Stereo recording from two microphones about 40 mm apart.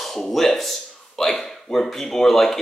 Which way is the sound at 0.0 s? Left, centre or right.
Centre.